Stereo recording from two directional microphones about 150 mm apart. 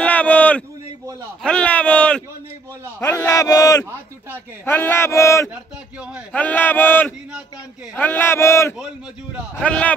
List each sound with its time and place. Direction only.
0.0 s a sound: 10° left (ahead or behind)
1.4 s speech: 5° left (ahead or behind)
5.5 s speech: 10° right (ahead or behind)
6.3 s speech: 10° left (ahead or behind)